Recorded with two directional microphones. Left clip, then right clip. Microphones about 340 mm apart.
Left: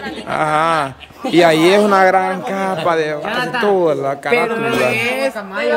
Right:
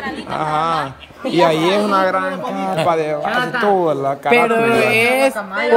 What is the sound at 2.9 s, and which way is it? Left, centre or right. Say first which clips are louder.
Speech: left 1 dB; centre.